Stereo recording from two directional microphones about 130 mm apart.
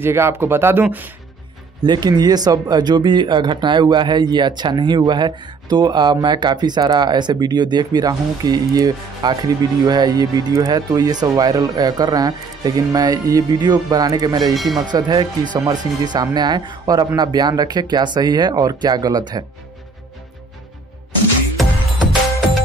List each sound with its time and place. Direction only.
0.0 s speech: 20° right (ahead or behind)
1.8 s speech: 30° right (ahead or behind)
14.5 s speech: centre (ahead or behind)
14.9 s speech: 35° right (ahead or behind)